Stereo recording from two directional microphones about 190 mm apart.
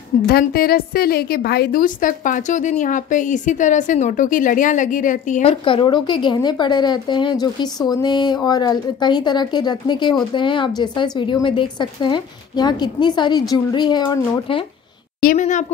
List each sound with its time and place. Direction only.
0.3 s a woman's voice: 50° left (ahead or behind); by 14.6 s 20° left (ahead or behind)
15.1 s a woman's voice: 45° left (ahead or behind)